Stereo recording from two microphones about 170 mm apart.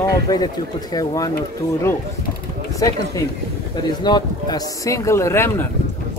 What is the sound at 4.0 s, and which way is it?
Speech, 25° left (ahead or behind).